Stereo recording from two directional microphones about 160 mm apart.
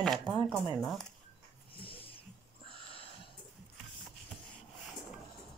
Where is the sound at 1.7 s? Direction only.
35° left (ahead or behind).